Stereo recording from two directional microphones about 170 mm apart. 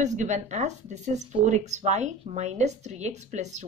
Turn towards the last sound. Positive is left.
turn(degrees=-45)  # may be behind; listen again after turning